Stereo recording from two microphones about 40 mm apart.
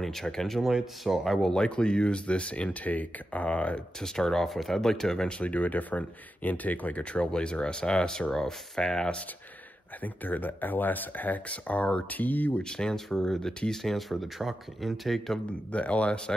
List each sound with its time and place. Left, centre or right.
0.0 s speech: centre; by 3.8 s left
4.0 s speech: centre
5.4 s speech: left
7.0 s speech: left
7.2 s speech: centre
10.0 s speech: left
12.6 s speech: centre
13.5 s speech: left
13.8 s speech: centre
15.7 s speech: left